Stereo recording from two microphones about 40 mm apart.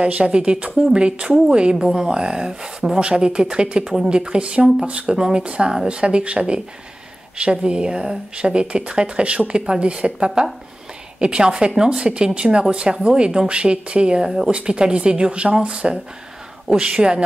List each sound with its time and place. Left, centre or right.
0.0 s speech: right
5.1 s speech: centre
5.4 s speech: right